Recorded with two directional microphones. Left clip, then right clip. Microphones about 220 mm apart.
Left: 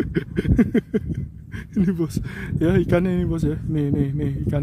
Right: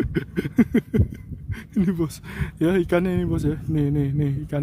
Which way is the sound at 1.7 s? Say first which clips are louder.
Left 1 dB; 5° right (ahead or behind).